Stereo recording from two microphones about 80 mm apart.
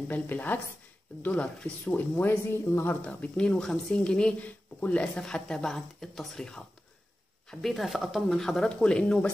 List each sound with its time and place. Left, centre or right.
0.1 s speech: left
3.0 s speech: centre
7.6 s speech: centre